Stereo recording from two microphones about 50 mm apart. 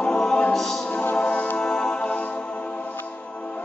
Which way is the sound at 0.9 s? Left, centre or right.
Left.